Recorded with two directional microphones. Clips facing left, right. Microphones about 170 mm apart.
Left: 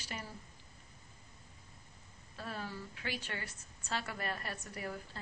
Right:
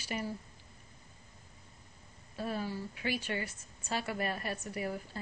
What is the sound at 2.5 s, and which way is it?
A woman's voice, 15° right (ahead or behind).